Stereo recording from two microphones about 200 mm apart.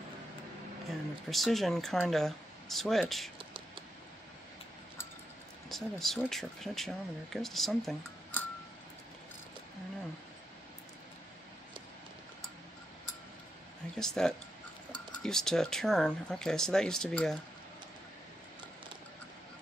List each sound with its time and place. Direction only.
0.8 s speech: centre (ahead or behind)
3.3 s whispering: 25° right (ahead or behind)
5.7 s speech: centre (ahead or behind)
13.9 s speech: 5° left (ahead or behind)